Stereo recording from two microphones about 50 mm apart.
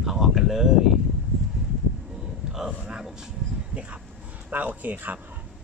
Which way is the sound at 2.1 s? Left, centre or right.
Centre.